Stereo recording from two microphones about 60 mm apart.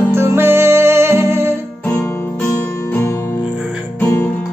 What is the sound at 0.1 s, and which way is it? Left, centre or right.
Music, right.